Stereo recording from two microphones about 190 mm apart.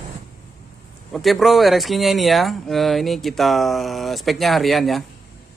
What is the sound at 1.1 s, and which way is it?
Speech, centre (ahead or behind).